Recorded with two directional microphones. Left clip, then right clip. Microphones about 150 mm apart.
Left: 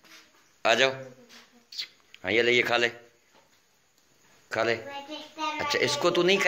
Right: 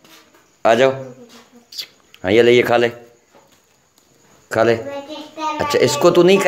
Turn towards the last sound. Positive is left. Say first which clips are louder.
# right 11 dB
turn(degrees=-40)  # may be behind; listen again after turning